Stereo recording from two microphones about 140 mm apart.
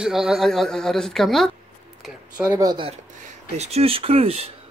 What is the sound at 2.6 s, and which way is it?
Speech, 30° right (ahead or behind).